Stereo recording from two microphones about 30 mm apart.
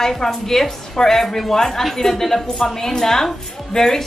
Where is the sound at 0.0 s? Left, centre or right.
Centre.